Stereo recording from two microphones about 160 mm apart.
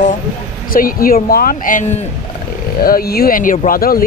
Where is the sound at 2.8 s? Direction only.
70° left (ahead or behind).